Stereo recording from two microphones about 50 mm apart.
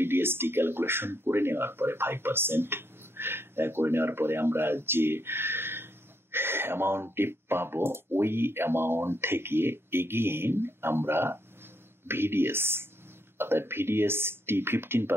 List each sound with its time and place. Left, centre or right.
0.0 s speech: right